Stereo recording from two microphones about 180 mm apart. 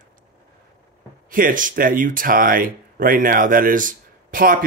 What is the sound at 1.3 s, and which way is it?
Speech, 50° right (ahead or behind).